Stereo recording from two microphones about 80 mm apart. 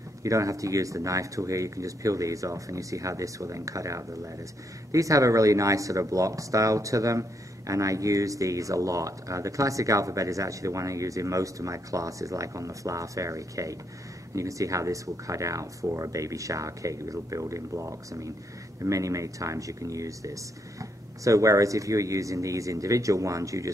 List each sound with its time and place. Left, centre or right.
0.2 s speech: right